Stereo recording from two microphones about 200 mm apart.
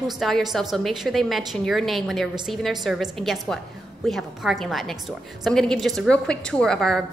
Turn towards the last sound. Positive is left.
turn(degrees=0)  # may be behind; listen again after turning